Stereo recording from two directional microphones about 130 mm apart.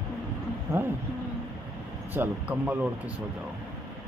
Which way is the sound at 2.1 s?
15° right (ahead or behind).